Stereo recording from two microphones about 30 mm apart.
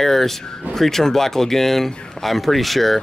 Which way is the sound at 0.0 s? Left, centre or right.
Centre.